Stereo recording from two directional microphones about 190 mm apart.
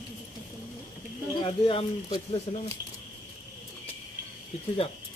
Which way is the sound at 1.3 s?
30° left (ahead or behind).